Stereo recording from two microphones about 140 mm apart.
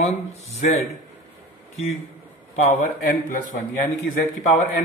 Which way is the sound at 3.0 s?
80° left.